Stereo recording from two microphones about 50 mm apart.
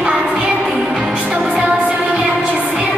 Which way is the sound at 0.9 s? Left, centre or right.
Right.